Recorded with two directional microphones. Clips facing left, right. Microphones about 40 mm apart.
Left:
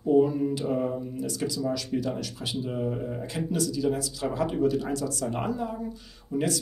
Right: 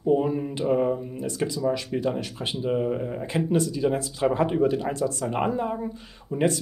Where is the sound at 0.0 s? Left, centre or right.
Right.